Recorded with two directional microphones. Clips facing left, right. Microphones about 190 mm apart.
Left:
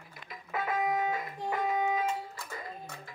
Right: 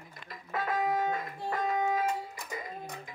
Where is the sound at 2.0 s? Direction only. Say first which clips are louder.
Right 1 dB; 15° right (ahead or behind).